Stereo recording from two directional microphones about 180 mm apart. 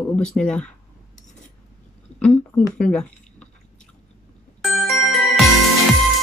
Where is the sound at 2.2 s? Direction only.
5° left (ahead or behind).